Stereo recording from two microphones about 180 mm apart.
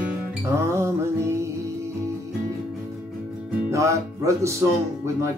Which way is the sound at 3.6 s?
15° right (ahead or behind).